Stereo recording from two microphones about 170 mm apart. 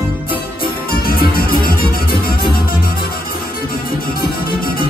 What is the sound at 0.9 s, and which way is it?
Music, 60° left (ahead or behind).